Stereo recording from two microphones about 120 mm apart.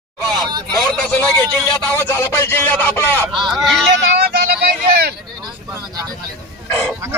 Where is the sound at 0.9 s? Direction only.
5° left (ahead or behind).